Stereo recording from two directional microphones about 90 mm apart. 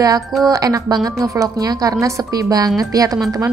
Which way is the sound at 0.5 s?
40° right (ahead or behind).